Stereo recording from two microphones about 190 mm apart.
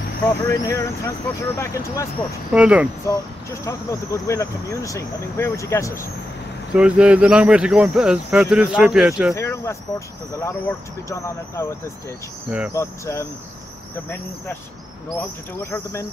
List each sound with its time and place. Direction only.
0.3 s speech: 15° left (ahead or behind)
2.5 s speech: 5° right (ahead or behind)
3.1 s speech: 15° left (ahead or behind)
6.7 s speech: 5° right (ahead or behind)
9.3 s speech: 15° left (ahead or behind)
12.4 s speech: 5° right (ahead or behind)
12.7 s speech: 15° left (ahead or behind)
15.1 s speech: 15° left (ahead or behind)